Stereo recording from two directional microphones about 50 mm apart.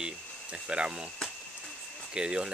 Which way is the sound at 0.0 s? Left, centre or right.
Right.